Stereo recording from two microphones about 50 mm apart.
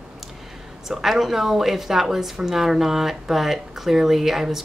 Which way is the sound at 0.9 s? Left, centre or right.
Centre.